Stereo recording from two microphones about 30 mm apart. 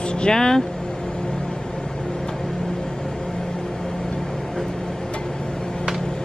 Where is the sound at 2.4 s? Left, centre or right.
Centre.